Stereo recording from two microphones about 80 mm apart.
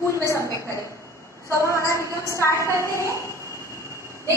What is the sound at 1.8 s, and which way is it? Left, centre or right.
A woman's voice, left.